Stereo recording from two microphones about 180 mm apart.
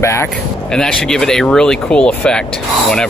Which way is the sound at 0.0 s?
15° left (ahead or behind).